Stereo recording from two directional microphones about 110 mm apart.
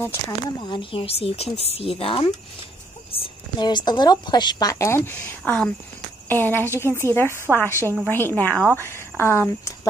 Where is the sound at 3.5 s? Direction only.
40° left (ahead or behind); by 7.0 s 20° left (ahead or behind).